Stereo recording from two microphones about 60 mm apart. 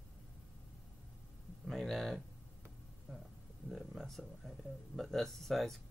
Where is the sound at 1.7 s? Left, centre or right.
Centre.